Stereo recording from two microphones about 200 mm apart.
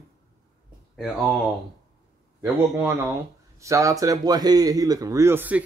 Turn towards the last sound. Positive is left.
turn(degrees=-10)  # may be behind; listen again after turning